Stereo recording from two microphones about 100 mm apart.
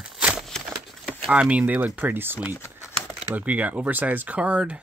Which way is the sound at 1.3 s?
10° right (ahead or behind).